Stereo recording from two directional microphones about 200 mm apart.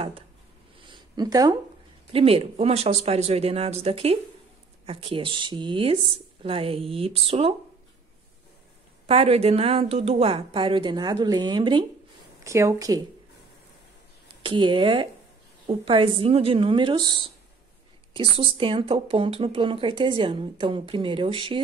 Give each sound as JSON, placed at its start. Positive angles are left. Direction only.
{"t": 0.8, "sound": "a sound", "side_deg": -20}
{"t": 2.1, "sound": "a woman's voice", "side_deg": -30}
{"t": 9.0, "sound": "a woman's voice", "side_deg": -30}
{"t": 14.4, "sound": "a woman's voice", "side_deg": -25}
{"t": 18.4, "sound": "a woman's voice", "side_deg": -25}